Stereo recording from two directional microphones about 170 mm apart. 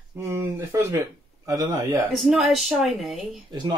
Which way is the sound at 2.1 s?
Centre (ahead or behind).